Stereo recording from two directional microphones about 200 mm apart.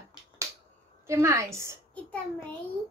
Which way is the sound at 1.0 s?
15° right (ahead or behind).